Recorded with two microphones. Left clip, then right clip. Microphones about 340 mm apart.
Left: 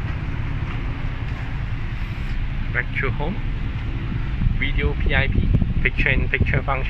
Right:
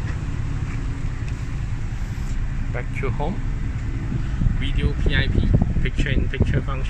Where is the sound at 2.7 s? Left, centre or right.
Centre.